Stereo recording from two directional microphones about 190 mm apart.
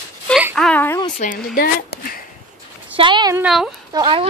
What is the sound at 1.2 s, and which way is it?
Speech, 45° left (ahead or behind).